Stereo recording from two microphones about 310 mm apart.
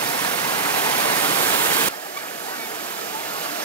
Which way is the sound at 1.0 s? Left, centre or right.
Centre.